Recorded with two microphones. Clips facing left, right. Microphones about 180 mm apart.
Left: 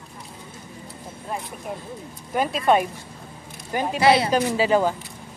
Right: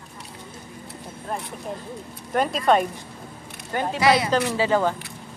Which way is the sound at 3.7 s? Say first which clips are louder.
Left 1 dB; 15° left (ahead or behind).